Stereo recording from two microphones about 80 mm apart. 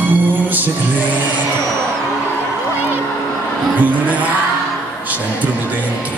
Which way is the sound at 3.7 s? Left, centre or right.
Right.